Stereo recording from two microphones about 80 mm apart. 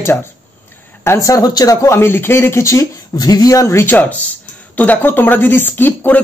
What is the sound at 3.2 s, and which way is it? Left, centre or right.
Speech, left.